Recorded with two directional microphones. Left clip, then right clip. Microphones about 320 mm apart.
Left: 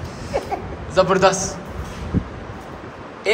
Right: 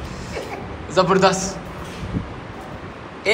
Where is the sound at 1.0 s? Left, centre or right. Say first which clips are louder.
Left 1 dB; centre.